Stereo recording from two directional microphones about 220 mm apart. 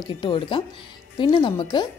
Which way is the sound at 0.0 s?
20° left (ahead or behind).